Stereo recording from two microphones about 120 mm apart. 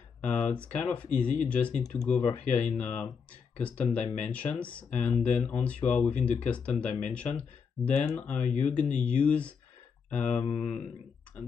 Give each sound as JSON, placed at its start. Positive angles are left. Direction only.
{"t": 0.2, "sound": "speech", "side_deg": 10}